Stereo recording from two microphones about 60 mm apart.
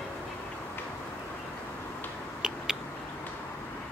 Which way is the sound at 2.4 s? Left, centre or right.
Centre.